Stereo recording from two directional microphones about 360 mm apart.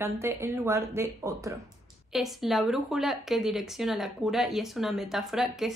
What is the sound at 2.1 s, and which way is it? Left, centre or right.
Speech, centre.